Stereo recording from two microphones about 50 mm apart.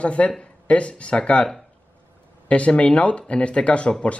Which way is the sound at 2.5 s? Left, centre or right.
Left.